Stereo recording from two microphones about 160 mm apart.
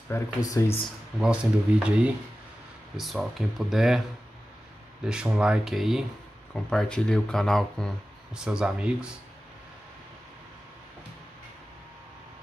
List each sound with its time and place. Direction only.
0.1 s speech: 15° left (ahead or behind)
1.2 s speech: 5° right (ahead or behind)
5.0 s speech: 5° right (ahead or behind)